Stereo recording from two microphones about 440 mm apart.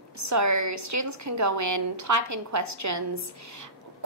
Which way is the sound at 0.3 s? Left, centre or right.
Right.